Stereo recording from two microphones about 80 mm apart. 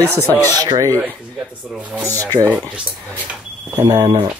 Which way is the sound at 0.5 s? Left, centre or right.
Right.